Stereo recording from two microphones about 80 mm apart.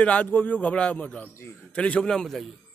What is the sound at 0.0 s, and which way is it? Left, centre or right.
Speech, centre.